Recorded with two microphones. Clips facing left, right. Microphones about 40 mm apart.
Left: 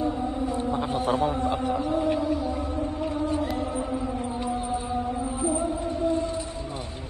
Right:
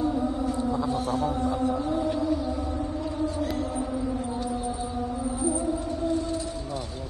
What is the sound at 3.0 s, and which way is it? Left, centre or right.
Music, left.